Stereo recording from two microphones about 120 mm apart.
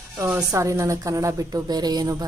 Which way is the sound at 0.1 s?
25° right (ahead or behind).